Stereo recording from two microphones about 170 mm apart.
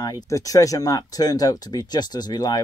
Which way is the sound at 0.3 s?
20° left (ahead or behind).